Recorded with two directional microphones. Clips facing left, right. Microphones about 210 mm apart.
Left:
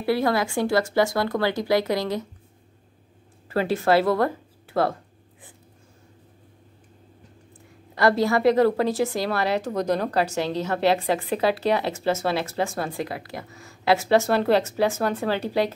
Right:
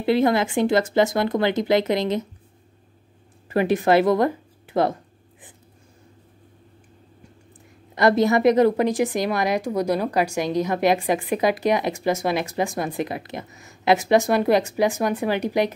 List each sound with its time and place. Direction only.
0.0 s speech: 20° right (ahead or behind)
3.4 s speech: 15° right (ahead or behind)
7.9 s a woman's voice: 20° right (ahead or behind)